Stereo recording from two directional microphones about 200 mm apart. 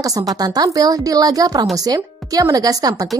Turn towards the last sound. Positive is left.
turn(degrees=-20)  # may be behind; listen again after turning